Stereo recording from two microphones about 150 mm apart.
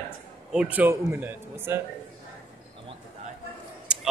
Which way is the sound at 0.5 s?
5° right (ahead or behind).